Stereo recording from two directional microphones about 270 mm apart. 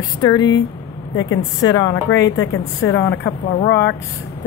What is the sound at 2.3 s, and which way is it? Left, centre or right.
Speech, left.